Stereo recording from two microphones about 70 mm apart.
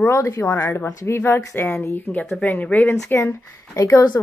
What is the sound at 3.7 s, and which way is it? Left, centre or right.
Speech, left.